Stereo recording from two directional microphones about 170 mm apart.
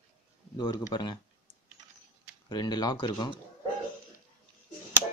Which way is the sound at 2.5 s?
25° left (ahead or behind).